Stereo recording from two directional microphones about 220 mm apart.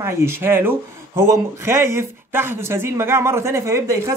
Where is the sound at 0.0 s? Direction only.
10° right (ahead or behind).